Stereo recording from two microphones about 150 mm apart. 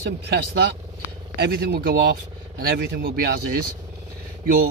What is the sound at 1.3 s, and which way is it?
Speech, 90° right.